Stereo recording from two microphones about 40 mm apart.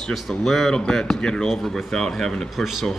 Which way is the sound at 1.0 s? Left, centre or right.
Centre.